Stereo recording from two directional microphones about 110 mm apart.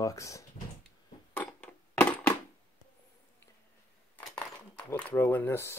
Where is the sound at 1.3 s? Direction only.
15° left (ahead or behind).